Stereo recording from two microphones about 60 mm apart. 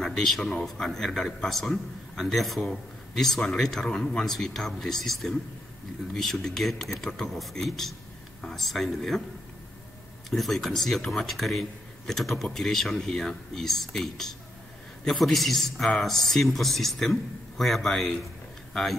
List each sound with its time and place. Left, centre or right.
0.0 s a sound: centre
0.4 s a man's voice: centre
10.3 s a man's voice: centre